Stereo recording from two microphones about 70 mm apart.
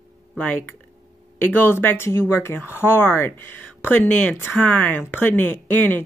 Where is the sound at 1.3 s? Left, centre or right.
Left.